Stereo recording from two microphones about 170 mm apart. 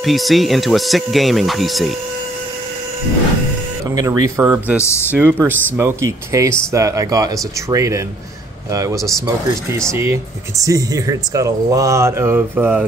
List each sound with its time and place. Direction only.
0.0 s speech: centre (ahead or behind)
3.9 s speech: 20° right (ahead or behind)
4.7 s speech: 15° left (ahead or behind)
5.1 s speech: 10° right (ahead or behind)